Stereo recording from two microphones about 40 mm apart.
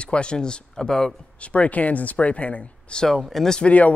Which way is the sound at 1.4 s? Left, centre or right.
Left.